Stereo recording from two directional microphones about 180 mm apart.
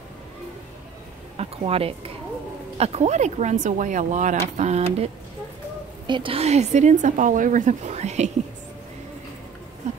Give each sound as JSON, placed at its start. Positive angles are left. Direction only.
{"t": 1.3, "sound": "speech", "side_deg": -35}